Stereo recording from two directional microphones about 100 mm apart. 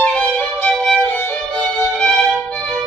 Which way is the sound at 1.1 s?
15° left (ahead or behind).